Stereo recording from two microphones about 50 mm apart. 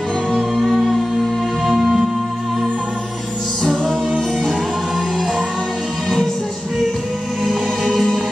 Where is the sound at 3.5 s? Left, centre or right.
Centre.